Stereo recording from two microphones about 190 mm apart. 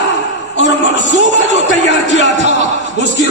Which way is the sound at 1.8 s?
65° left (ahead or behind).